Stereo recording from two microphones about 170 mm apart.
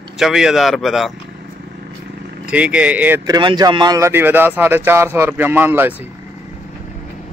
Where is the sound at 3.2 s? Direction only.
25° right (ahead or behind).